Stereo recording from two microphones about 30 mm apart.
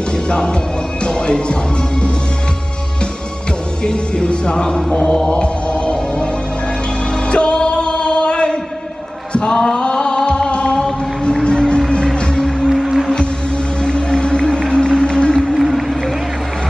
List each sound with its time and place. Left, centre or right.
0.3 s music: left
3.8 s music: left
5.3 s music: left
7.2 s music: left
9.5 s chant: left
11.4 s music: left
12.1 s music: centre
13.8 s music: left
15.5 s music: centre